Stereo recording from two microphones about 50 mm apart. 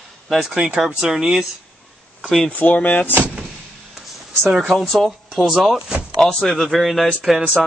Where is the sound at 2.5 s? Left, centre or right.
Left.